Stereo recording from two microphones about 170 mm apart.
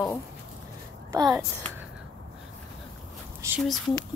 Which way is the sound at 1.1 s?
20° right (ahead or behind).